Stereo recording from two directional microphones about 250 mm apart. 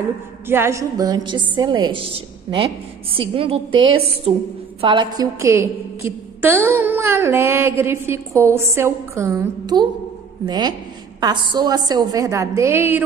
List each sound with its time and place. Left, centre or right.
0.5 s a woman's voice: centre